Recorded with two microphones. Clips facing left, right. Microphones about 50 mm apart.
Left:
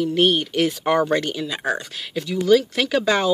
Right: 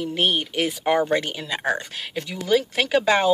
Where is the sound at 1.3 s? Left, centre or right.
Right.